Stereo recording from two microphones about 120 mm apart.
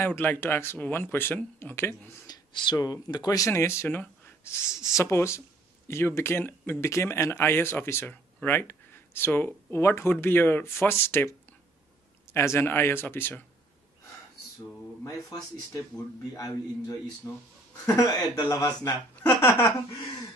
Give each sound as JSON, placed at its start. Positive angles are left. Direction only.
{"t": 0.0, "sound": "speech", "side_deg": 15}
{"t": 2.2, "sound": "speech", "side_deg": 35}
{"t": 15.0, "sound": "speech", "side_deg": 25}
{"t": 19.4, "sound": "speech", "side_deg": 15}